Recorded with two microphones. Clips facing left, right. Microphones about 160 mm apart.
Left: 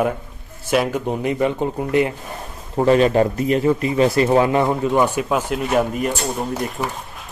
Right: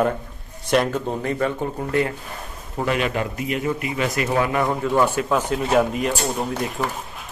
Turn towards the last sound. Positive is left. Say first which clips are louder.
# left 1 dB
turn(degrees=0)  # may be behind; listen again after turning